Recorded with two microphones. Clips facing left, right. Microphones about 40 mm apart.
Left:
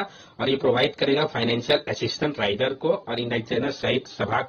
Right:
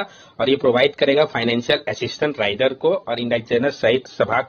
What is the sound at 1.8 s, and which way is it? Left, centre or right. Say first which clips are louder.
Speech: right 4 dB; right.